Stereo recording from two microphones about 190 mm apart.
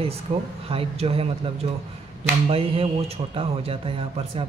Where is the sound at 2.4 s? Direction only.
30° right (ahead or behind).